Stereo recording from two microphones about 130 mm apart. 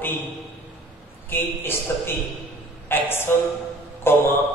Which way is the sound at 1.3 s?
15° left (ahead or behind).